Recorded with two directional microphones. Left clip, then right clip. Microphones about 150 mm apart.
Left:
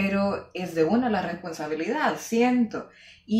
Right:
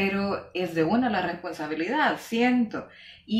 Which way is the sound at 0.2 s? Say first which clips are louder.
Left 1 dB; 20° left (ahead or behind).